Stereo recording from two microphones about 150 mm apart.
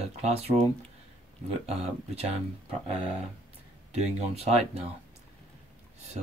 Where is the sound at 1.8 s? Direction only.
45° right (ahead or behind).